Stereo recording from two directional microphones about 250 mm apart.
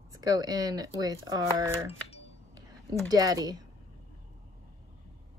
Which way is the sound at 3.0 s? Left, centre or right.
Centre.